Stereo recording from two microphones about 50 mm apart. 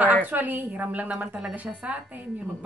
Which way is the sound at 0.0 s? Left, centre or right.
Right.